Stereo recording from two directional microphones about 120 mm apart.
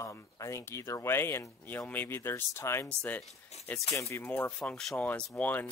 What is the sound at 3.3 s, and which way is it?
Speech, 65° left (ahead or behind).